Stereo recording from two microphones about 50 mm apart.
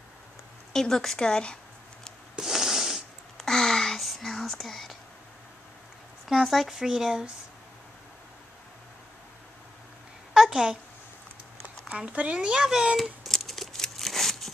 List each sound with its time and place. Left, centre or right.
0.7 s speech: centre
2.3 s snort: centre
3.3 s whispering: centre
6.2 s a child's voice: centre
10.3 s a sound: centre
12.1 s speech: right
12.6 s a child's voice: centre
13.4 s a sound: centre